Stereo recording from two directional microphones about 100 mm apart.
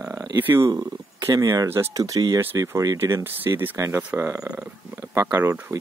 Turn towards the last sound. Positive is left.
turn(degrees=-20)  # may be behind; listen again after turning